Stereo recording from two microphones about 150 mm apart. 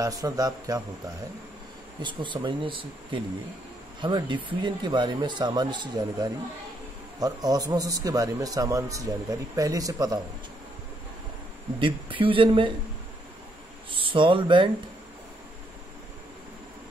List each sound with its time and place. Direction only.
0.0 s a man's voice: 25° right (ahead or behind)
11.8 s speech: 35° right (ahead or behind)
13.8 s speech: 35° right (ahead or behind)